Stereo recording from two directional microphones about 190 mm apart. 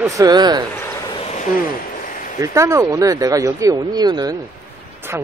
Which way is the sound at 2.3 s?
15° right (ahead or behind).